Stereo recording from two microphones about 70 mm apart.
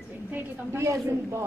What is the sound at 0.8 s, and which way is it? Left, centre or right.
Speech, right.